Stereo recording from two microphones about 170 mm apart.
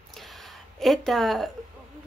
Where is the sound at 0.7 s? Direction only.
Centre (ahead or behind).